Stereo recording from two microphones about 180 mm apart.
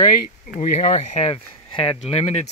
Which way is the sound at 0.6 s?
35° left (ahead or behind).